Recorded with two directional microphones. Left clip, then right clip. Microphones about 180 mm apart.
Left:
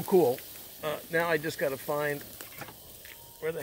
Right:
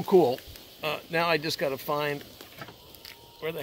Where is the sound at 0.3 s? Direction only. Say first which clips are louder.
Even; 15° right (ahead or behind).